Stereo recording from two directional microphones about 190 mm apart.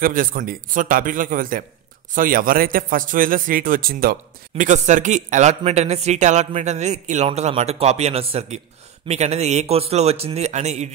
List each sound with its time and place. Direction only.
0.0 s a man's voice: 45° right (ahead or behind)